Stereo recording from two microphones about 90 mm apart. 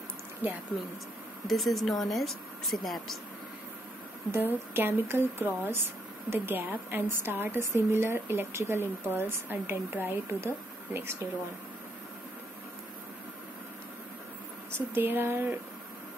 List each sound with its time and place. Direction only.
0.4 s a woman's voice: 20° right (ahead or behind)
1.5 s speech: centre (ahead or behind)
4.3 s a woman's voice: 25° right (ahead or behind)
15.0 s a woman's voice: 25° right (ahead or behind)